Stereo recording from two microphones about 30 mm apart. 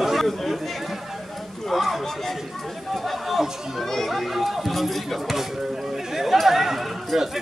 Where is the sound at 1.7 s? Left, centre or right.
Centre.